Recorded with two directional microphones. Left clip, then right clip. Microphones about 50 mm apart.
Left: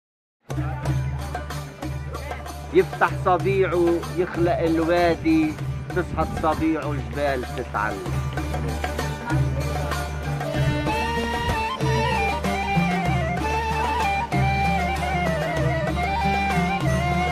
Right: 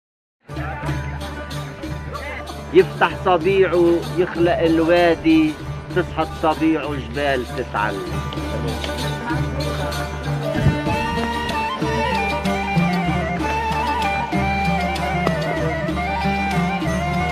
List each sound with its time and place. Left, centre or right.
2.7 s speech: centre
10.5 s music: left